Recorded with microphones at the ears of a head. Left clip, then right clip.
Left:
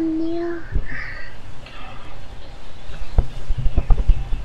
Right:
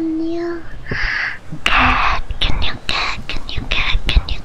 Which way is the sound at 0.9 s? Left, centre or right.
Right.